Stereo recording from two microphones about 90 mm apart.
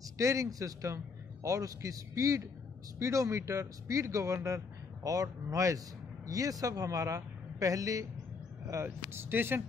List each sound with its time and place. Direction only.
0.2 s speech: 35° right (ahead or behind)